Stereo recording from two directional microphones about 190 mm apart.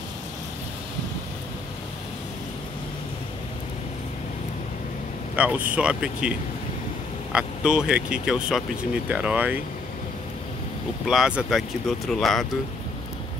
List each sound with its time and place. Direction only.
5.3 s speech: 5° right (ahead or behind)
7.3 s speech: 5° right (ahead or behind)
11.1 s speech: 5° right (ahead or behind)